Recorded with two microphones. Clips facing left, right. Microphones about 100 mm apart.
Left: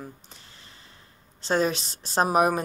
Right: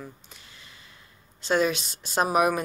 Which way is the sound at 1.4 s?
35° left (ahead or behind).